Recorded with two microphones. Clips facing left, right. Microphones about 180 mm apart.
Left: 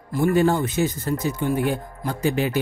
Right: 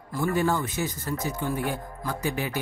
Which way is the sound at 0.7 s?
80° left.